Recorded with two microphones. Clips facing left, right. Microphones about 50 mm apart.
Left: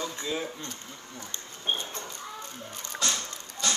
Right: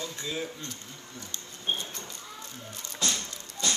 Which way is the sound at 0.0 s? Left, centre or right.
Centre.